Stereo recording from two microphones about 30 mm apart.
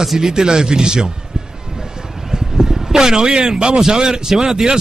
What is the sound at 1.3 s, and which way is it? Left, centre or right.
Music, right.